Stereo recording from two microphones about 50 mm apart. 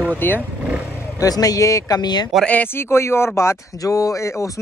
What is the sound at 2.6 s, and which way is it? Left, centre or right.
Speech, left.